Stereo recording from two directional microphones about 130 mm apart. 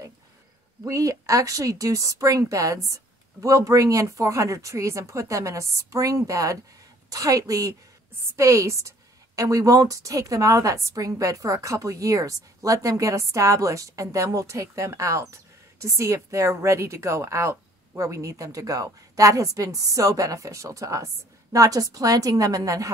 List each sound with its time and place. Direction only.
0.8 s a woman's voice: 25° right (ahead or behind)